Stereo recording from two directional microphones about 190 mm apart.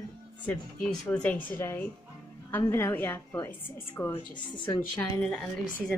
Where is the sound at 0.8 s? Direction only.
5° left (ahead or behind).